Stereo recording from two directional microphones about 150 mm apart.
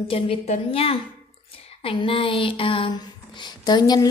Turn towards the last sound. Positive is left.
turn(degrees=25)  # may be behind; listen again after turning